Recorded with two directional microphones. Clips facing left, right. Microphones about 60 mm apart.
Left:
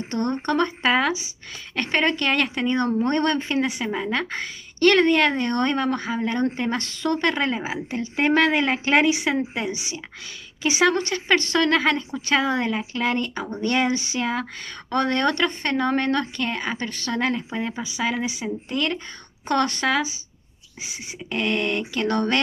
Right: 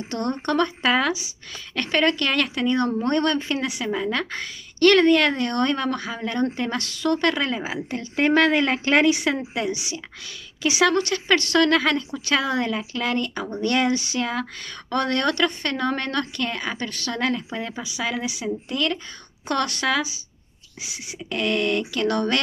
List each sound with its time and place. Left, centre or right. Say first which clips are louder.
0.1 s a woman's voice: left 1 dB; left
3.8 s a woman's voice: even; left